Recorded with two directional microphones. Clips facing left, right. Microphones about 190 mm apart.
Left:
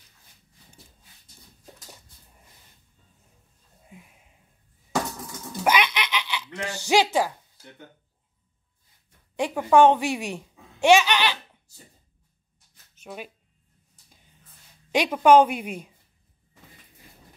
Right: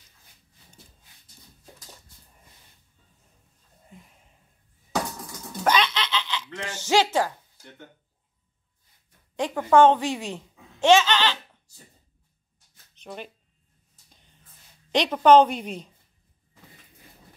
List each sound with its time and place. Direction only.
3.9 s a sound: 10° left (ahead or behind)
5.6 s giggle: 10° left (ahead or behind)
9.4 s speech: 10° left (ahead or behind)
12.9 s speech: 5° left (ahead or behind)
14.9 s a woman's voice: 10° left (ahead or behind)